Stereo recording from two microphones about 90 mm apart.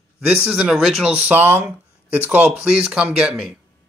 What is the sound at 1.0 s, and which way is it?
Speech, 15° right (ahead or behind).